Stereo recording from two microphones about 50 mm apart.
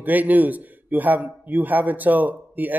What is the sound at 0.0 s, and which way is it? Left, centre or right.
A man's voice, right.